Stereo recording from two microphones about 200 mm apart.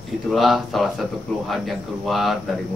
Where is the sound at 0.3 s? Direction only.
Centre (ahead or behind).